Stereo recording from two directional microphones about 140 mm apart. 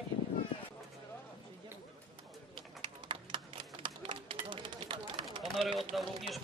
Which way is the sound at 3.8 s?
40° right (ahead or behind).